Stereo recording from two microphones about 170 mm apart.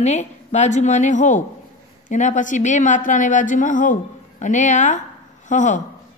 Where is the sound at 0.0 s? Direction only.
40° left (ahead or behind).